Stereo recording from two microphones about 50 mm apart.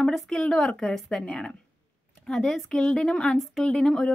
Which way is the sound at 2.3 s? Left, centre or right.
Centre.